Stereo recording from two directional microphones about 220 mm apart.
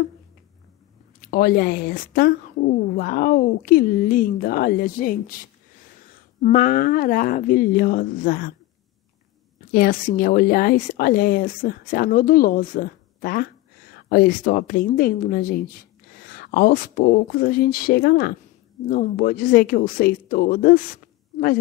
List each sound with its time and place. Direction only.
1.3 s a woman's voice: 45° left (ahead or behind)
6.4 s a woman's voice: 35° left (ahead or behind)
9.7 s a woman's voice: 40° left (ahead or behind)